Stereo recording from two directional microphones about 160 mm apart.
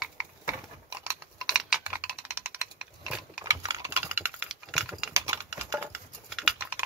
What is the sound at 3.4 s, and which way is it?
Typing, 20° right (ahead or behind).